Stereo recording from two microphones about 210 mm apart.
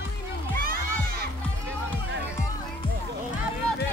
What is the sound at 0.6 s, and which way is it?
Music, 45° right (ahead or behind).